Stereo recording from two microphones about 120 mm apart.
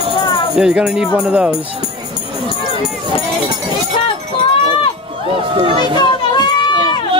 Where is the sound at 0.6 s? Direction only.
5° right (ahead or behind).